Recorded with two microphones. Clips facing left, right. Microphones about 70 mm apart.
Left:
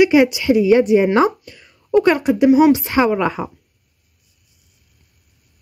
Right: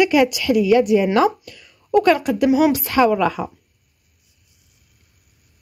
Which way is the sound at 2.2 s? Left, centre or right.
Left.